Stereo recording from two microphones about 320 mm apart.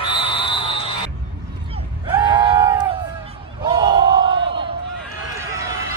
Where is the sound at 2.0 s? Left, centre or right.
Centre.